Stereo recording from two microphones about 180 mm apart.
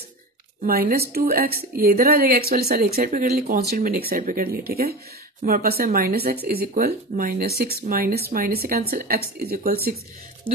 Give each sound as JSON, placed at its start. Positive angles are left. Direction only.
{"t": 0.6, "sound": "speech", "side_deg": -55}